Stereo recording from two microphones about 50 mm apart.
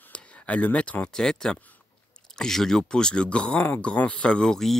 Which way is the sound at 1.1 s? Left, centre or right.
Centre.